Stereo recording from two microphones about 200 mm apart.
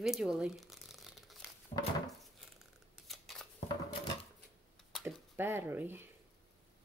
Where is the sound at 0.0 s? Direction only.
Centre (ahead or behind).